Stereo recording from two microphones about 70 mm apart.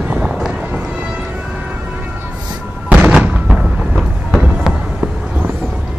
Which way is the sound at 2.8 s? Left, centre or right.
Right.